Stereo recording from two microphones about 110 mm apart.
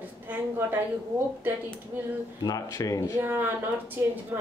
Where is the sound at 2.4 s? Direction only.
30° left (ahead or behind).